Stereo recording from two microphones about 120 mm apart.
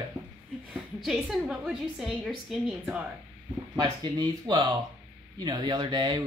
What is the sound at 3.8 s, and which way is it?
Speech, 40° right (ahead or behind).